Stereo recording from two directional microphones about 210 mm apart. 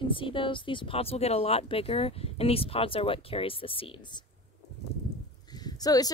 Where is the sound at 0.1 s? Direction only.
25° left (ahead or behind).